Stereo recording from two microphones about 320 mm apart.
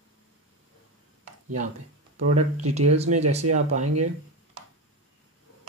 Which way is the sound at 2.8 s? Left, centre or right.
Right.